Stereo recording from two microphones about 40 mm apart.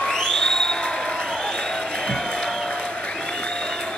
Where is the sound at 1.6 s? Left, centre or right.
Centre.